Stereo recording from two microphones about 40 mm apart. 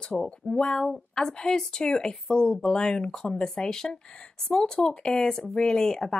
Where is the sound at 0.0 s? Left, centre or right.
Left.